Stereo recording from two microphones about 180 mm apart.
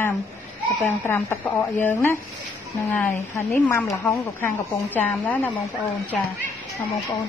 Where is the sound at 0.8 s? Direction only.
15° left (ahead or behind).